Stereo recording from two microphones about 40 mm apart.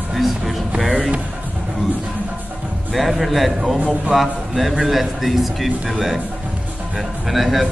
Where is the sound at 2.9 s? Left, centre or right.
Centre.